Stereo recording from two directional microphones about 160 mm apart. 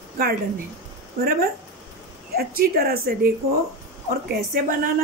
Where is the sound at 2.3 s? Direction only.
70° right (ahead or behind).